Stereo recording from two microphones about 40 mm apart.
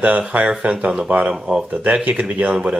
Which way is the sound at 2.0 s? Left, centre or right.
Right.